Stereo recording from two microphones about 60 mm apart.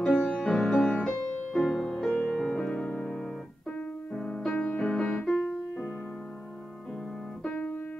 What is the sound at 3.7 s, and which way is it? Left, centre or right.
Keyboard, left.